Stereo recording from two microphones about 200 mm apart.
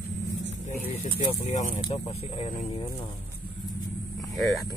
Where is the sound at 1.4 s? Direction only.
30° left (ahead or behind).